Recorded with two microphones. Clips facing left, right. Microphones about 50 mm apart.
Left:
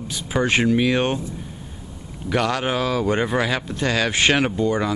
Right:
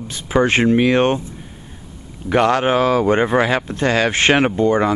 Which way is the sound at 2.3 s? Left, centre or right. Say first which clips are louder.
Right 6 dB; right.